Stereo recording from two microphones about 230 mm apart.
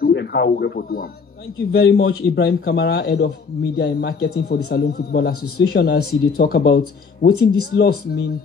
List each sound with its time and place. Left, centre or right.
0.0 s a man's voice: left